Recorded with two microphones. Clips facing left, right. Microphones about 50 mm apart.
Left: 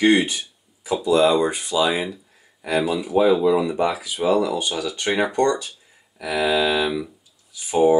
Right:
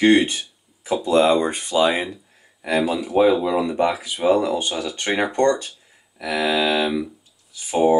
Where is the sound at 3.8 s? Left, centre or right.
Right.